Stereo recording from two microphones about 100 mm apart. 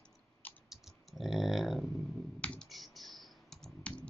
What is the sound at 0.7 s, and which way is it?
Typing, 5° right (ahead or behind).